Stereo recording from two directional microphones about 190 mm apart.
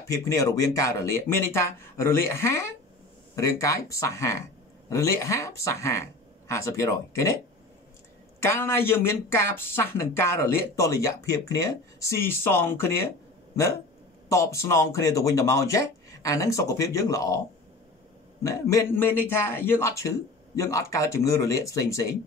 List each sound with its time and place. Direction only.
0.1 s speech: 15° left (ahead or behind)
8.4 s speech: 15° left (ahead or behind)
14.3 s speech: 15° left (ahead or behind)
18.4 s speech: 15° left (ahead or behind)